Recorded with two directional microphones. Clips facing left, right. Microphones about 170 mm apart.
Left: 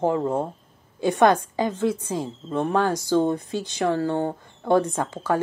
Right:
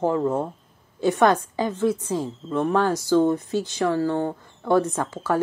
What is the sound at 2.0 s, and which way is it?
Speech, 20° left (ahead or behind).